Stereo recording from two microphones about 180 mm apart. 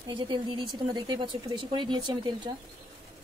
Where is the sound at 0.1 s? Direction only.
25° right (ahead or behind).